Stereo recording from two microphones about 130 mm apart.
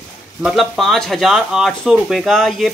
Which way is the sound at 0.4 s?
Centre (ahead or behind).